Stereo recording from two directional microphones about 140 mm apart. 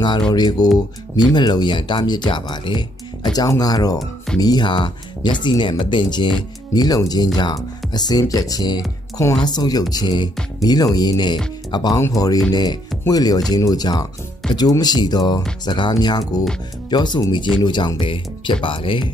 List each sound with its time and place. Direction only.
0.3 s speech: 30° left (ahead or behind)